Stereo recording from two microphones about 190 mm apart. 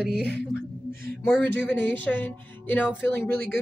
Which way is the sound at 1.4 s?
10° left (ahead or behind).